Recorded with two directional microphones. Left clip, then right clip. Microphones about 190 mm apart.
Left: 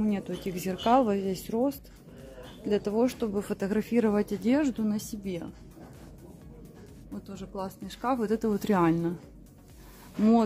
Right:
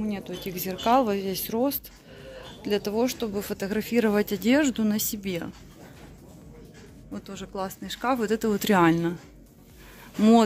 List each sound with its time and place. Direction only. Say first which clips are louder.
0.0 s speech: left 1 dB; 25° left (ahead or behind)
4.0 s speech: right 5 dB; 5° left (ahead or behind)
7.2 s speech: right 4 dB; 5° right (ahead or behind)